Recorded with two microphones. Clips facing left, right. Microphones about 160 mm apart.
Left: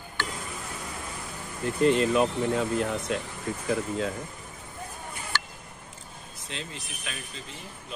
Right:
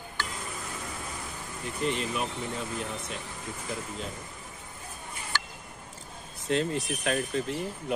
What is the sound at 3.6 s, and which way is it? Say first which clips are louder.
Speech: left 9 dB; 70° left (ahead or behind).